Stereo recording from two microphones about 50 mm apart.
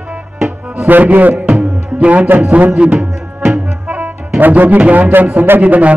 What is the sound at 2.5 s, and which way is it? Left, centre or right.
Speech, right.